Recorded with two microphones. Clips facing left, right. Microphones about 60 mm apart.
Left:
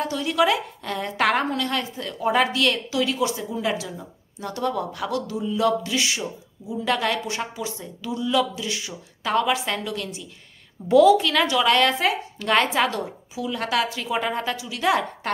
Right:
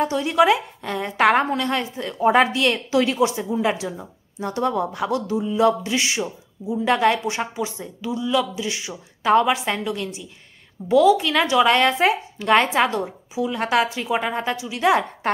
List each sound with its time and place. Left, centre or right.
0.0 s a woman's voice: right
2.9 s speech: right
3.2 s a woman's voice: right
10.9 s a woman's voice: centre
11.1 s a woman's voice: centre